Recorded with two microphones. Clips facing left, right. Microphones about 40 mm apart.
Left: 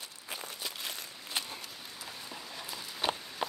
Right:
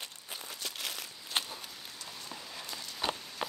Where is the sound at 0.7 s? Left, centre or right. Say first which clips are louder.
Right 1 dB; right.